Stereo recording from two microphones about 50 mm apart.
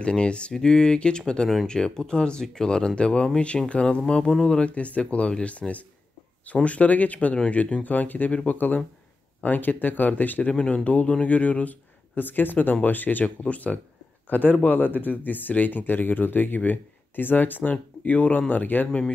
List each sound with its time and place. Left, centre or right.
0.0 s speech: left
4.6 s speech: left
10.5 s speech: left